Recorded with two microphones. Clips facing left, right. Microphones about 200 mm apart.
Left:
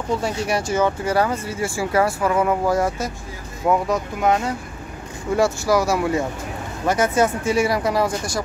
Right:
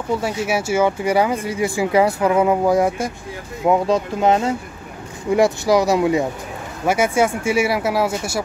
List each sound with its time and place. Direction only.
0.2 s speech: 5° right (ahead or behind)